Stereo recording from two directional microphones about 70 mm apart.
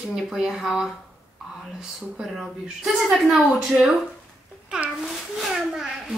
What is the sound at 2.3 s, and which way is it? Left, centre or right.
Speech, centre.